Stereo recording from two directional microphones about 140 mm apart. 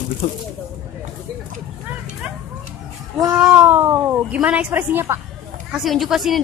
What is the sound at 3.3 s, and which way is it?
Speech, 5° right (ahead or behind).